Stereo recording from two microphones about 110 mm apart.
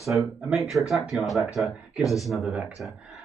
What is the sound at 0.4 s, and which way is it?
Speech, 5° right (ahead or behind).